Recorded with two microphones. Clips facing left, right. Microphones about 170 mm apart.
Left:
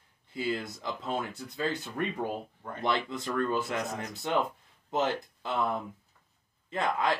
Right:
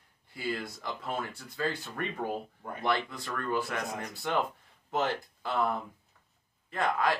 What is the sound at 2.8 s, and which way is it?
Speech, 20° left (ahead or behind).